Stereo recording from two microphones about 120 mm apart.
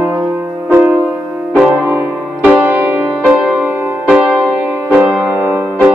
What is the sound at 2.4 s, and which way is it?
Music, 15° right (ahead or behind).